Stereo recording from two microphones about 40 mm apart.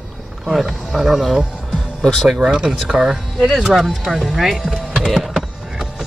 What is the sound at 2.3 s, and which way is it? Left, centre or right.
Speech, right.